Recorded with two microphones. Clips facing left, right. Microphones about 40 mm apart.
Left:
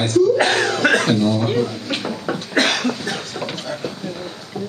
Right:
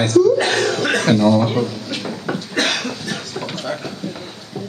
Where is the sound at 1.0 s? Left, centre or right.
Right.